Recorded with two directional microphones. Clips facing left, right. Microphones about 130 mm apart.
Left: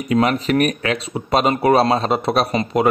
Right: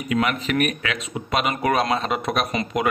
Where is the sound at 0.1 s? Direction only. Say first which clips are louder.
Left 6 dB; 35° left (ahead or behind).